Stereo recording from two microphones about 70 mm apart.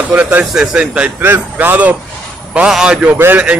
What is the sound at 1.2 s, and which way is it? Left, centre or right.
Speech, right.